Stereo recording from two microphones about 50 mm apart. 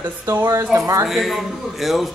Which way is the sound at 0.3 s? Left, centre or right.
Right.